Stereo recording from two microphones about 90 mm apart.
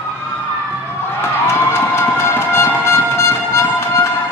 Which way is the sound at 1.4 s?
30° left (ahead or behind).